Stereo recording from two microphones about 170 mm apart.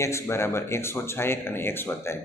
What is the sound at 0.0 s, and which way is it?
Speech, 15° left (ahead or behind).